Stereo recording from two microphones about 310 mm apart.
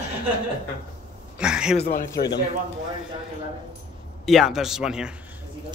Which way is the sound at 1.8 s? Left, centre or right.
Left.